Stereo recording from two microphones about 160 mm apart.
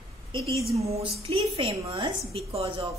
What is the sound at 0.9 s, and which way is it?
A woman's voice, 35° right (ahead or behind).